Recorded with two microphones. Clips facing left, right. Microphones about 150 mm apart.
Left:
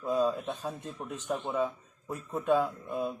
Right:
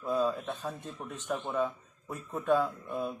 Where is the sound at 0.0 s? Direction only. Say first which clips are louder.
Left 2 dB; 10° left (ahead or behind).